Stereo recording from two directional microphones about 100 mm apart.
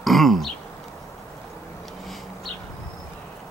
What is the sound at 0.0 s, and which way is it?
Throat clearing, centre (ahead or behind).